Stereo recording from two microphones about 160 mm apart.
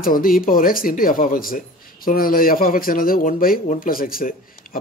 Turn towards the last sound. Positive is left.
turn(degrees=65)  # may be behind; listen again after turning